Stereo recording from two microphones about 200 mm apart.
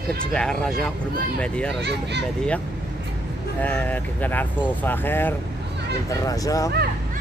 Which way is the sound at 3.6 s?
10° left (ahead or behind).